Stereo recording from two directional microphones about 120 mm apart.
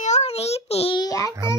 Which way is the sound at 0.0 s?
65° left (ahead or behind).